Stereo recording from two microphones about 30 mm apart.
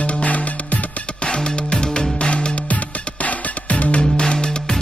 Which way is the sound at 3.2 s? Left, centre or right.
Left.